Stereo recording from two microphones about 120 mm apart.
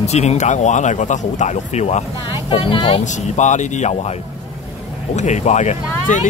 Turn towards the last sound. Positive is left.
turn(degrees=90)